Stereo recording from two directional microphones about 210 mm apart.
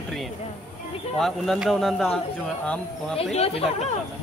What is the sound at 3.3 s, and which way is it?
Speech, 30° left (ahead or behind).